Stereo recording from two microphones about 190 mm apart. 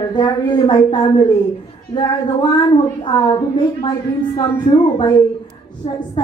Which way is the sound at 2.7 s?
25° left (ahead or behind).